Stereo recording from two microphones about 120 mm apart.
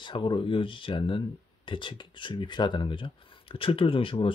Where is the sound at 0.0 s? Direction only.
40° left (ahead or behind).